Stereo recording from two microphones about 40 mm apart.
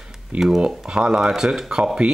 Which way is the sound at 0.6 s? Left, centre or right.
Right.